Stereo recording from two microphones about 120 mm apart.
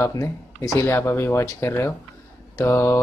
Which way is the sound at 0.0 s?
25° left (ahead or behind).